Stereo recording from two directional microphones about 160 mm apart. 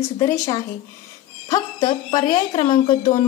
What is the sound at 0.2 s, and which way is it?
A woman's voice, 20° left (ahead or behind).